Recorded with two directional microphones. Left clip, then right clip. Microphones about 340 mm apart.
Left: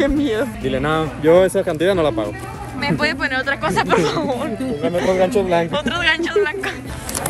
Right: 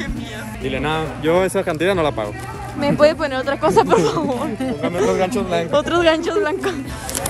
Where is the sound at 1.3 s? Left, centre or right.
Centre.